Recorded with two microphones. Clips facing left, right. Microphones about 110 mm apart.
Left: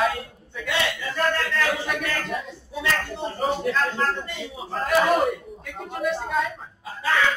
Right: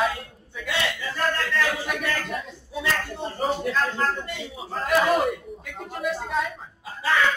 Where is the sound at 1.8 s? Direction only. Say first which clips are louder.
Even; centre (ahead or behind).